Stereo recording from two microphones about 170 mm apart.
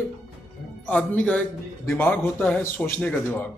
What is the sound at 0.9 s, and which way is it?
Speech, 10° left (ahead or behind).